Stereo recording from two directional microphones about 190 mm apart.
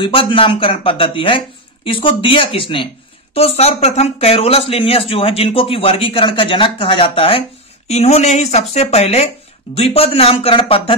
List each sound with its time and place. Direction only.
0.0 s speech: 25° left (ahead or behind)